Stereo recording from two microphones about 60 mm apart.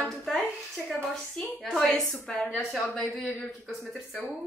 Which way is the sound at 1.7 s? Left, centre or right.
Centre.